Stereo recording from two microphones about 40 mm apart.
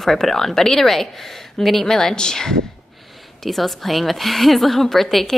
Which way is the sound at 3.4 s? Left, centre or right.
Centre.